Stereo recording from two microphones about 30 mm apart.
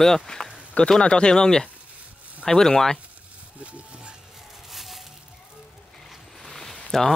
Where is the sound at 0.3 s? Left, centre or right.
Left.